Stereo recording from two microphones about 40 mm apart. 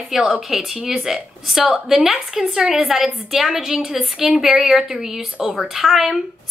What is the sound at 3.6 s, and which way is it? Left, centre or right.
A woman's voice, centre.